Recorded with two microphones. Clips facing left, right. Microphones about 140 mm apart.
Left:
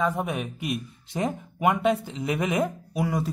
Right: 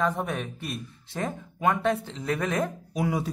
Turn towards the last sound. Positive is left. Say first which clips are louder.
# left 1 dB
turn(degrees=0)  # may be behind; listen again after turning